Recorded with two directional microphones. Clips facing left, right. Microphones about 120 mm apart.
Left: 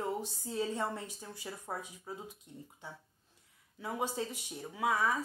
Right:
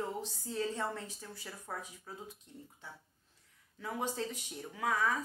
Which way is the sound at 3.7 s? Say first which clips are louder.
Left 1 dB; 15° left (ahead or behind).